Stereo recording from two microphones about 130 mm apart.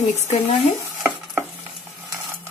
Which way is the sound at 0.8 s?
15° right (ahead or behind).